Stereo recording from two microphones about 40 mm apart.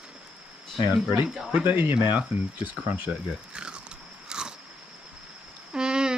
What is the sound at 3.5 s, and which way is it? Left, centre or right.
Biting, right.